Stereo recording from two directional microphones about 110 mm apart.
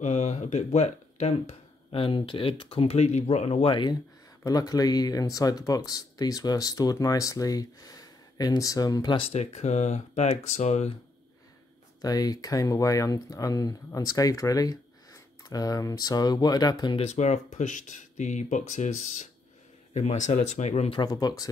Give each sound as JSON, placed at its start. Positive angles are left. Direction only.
{"t": 0.0, "sound": "speech", "side_deg": 90}
{"t": 1.9, "sound": "speech", "side_deg": 55}
{"t": 3.6, "sound": "speech", "side_deg": 45}
{"t": 4.5, "sound": "speech", "side_deg": 35}
{"t": 9.3, "sound": "speech", "side_deg": 85}
{"t": 12.0, "sound": "speech", "side_deg": 35}
{"t": 16.9, "sound": "speech", "side_deg": 80}
{"t": 20.9, "sound": "speech", "side_deg": 40}